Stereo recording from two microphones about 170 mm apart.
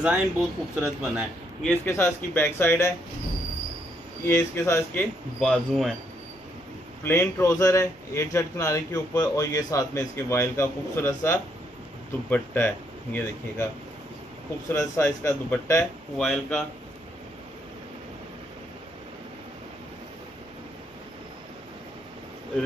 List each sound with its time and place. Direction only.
0.0 s speech: 5° right (ahead or behind)
1.6 s speech: 10° left (ahead or behind)
4.3 s speech: 15° left (ahead or behind)
5.4 s speech: 5° left (ahead or behind)
7.0 s speech: 15° left (ahead or behind)
14.7 s speech: 15° left (ahead or behind)
16.2 s speech: 5° left (ahead or behind)